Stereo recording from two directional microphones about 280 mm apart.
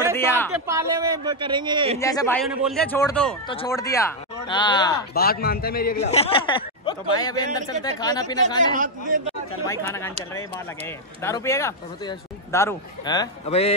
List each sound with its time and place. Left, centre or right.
0.1 s a sound: centre
0.5 s a man's voice: centre
2.0 s a man's voice: centre
5.1 s a man's voice: left; by 8.5 s centre
8.7 s a man's voice: right
9.7 s a man's voice: centre
11.2 s a man's voice: centre